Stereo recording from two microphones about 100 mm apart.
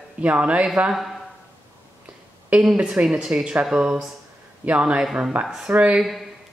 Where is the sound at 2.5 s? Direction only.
10° right (ahead or behind).